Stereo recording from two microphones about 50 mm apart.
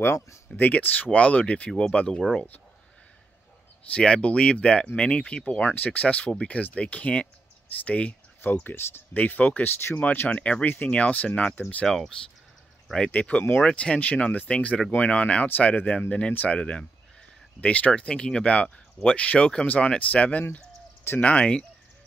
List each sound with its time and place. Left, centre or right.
0.0 s speech: left
0.6 s speech: left
1.1 s speech: left
3.9 s speech: left
8.1 s speech: left
9.6 s speech: left
9.9 s speech: left
10.3 s speech: left
11.8 s speech: centre
13.2 s speech: left
16.1 s speech: left
18.0 s speech: centre